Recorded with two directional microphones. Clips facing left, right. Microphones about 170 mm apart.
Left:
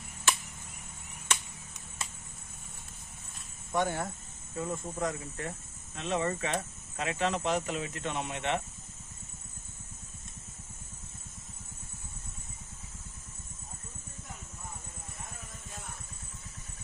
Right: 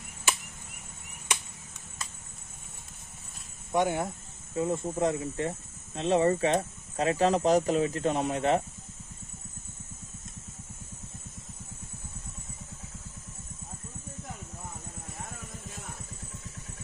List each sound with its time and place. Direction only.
3.7 s speech: 15° right (ahead or behind); by 8.6 s 40° right (ahead or behind)